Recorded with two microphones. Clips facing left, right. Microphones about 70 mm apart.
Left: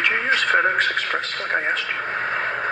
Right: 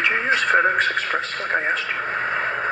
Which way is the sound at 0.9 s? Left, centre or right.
Right.